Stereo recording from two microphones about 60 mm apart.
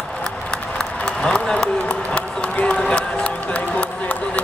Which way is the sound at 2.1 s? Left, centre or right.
Centre.